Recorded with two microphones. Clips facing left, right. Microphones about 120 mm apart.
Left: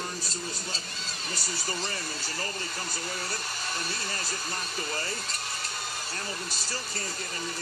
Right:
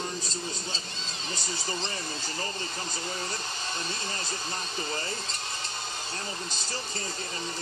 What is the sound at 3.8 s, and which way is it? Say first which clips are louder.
Speech: even; 25° right (ahead or behind).